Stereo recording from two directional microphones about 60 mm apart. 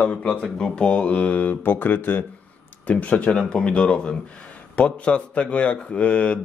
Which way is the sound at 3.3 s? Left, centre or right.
Centre.